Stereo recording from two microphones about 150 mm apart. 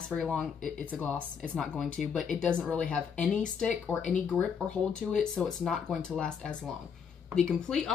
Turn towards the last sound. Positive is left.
turn(degrees=5)  # may be behind; listen again after turning